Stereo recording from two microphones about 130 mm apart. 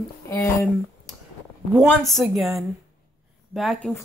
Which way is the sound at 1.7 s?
Centre (ahead or behind).